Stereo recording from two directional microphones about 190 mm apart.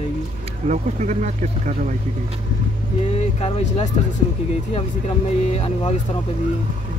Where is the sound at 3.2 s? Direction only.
35° left (ahead or behind).